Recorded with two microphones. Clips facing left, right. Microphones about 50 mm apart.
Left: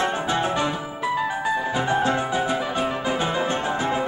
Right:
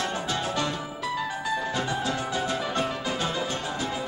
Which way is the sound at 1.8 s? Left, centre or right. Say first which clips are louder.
Left 7 dB; left.